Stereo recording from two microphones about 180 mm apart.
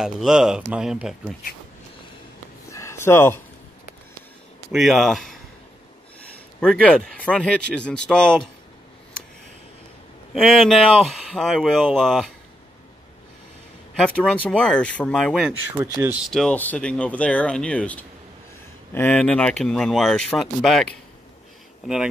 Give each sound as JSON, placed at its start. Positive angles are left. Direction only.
{"t": 0.0, "sound": "speech", "side_deg": -5}
{"t": 2.7, "sound": "a sound", "side_deg": 15}
{"t": 4.7, "sound": "speech", "side_deg": 0}
{"t": 6.8, "sound": "speech", "side_deg": 5}
{"t": 10.3, "sound": "speech", "side_deg": 0}
{"t": 14.0, "sound": "speech", "side_deg": 5}
{"t": 15.8, "sound": "speech", "side_deg": -15}
{"t": 16.3, "sound": "speech", "side_deg": 5}